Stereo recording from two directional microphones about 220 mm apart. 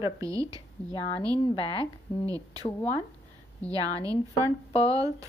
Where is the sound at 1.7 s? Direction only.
15° right (ahead or behind).